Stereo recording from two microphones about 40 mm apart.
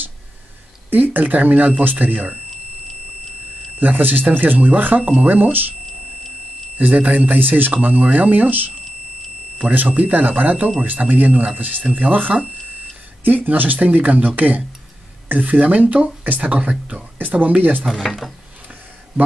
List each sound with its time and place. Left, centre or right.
0.8 s speech: right
2.9 s a sound: centre
3.8 s speech: right
6.8 s speech: right
7.3 s speech: right
9.8 s speech: right
17.2 s speech: right